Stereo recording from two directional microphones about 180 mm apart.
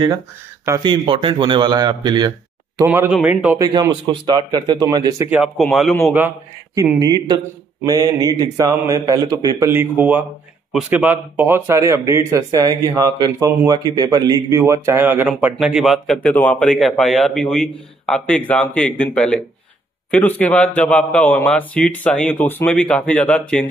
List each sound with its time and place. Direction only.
0.8 s a man's voice: 30° right (ahead or behind)
2.8 s speech: 10° right (ahead or behind)
3.5 s a man's voice: 20° right (ahead or behind)
5.3 s a man's voice: centre (ahead or behind)
6.0 s a man's voice: 10° right (ahead or behind); by 23.6 s 5° left (ahead or behind)